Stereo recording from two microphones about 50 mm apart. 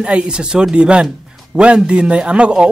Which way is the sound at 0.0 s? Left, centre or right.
Centre.